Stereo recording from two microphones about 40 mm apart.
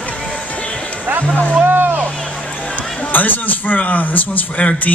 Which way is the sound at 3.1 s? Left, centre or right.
Left.